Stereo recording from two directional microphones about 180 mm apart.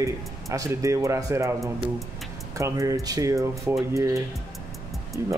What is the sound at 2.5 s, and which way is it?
Speech, 15° right (ahead or behind).